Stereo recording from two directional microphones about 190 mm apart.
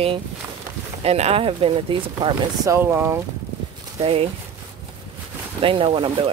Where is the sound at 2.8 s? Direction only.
10° right (ahead or behind).